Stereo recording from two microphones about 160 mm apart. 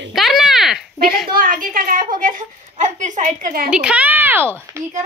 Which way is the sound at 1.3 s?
60° right (ahead or behind).